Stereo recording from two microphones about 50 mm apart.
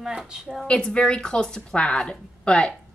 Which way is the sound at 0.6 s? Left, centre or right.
Centre.